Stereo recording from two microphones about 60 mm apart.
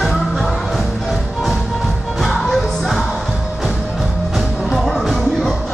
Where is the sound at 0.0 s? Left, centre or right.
Centre.